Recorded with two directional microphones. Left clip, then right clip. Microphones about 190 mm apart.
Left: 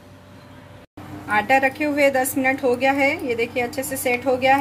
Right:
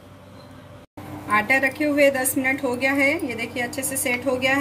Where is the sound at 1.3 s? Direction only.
40° left (ahead or behind).